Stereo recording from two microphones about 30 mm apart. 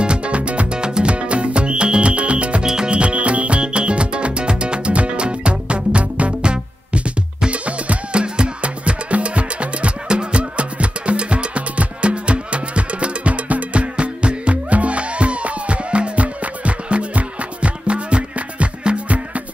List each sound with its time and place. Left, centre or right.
0.0 s music: right
0.7 s music: right
1.1 s music: right
2.6 s music: right
2.9 s music: right
12.0 s music: right
13.9 s music: right